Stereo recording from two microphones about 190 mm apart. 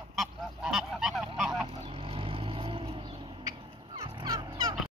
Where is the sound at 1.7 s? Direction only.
30° right (ahead or behind).